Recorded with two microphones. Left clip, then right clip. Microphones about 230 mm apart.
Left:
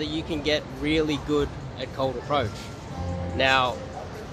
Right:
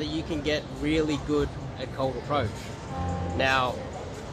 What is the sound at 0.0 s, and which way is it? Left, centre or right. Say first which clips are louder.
Speech: left 2 dB; centre.